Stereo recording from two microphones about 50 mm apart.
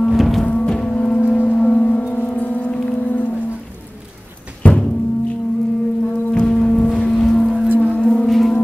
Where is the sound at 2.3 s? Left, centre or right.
Left.